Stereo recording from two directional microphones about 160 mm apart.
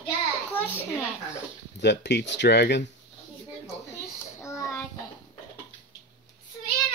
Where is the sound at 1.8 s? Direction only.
90° left.